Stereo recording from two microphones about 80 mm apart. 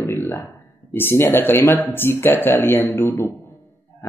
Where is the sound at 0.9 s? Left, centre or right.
Left.